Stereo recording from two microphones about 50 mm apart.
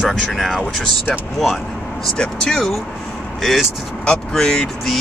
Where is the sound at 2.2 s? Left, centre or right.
Centre.